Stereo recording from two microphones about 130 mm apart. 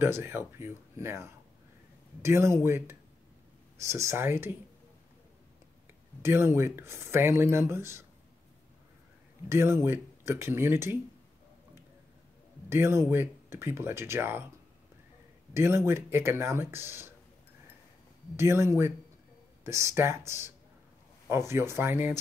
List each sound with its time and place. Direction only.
0.0 s speech: 20° right (ahead or behind)
6.2 s speech: 20° right (ahead or behind)
9.5 s speech: 20° right (ahead or behind)
12.6 s speech: 20° right (ahead or behind)
15.5 s speech: 20° right (ahead or behind)
18.3 s speech: 20° right (ahead or behind)